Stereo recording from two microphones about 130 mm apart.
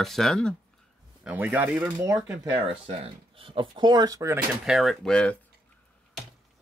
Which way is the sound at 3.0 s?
40° right (ahead or behind).